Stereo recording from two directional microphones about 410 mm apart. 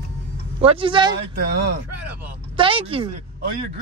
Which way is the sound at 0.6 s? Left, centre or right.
Centre.